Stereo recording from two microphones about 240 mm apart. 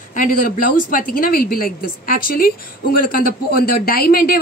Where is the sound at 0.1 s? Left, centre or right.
Left.